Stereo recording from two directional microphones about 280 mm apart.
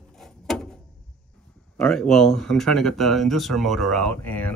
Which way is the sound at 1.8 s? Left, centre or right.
Centre.